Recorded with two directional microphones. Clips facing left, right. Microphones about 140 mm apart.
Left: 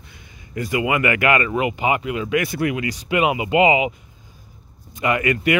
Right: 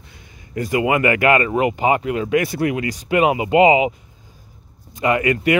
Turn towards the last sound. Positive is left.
turn(degrees=-30)  # may be behind; listen again after turning